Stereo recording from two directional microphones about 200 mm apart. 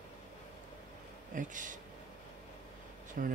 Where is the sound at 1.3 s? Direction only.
40° right (ahead or behind).